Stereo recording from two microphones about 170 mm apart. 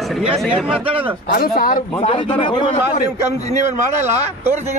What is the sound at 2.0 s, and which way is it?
Speech, 35° left (ahead or behind).